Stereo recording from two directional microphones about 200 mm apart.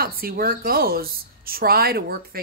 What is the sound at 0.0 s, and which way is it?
A woman's voice, 45° right (ahead or behind).